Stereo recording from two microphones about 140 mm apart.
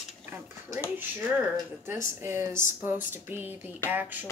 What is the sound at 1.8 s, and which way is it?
Speech, 15° right (ahead or behind).